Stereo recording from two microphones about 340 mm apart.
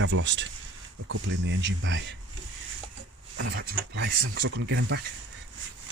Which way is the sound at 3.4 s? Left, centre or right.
Right.